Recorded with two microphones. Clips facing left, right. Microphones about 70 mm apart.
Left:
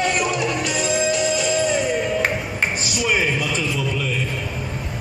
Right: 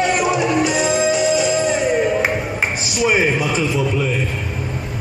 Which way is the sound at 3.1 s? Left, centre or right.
Right.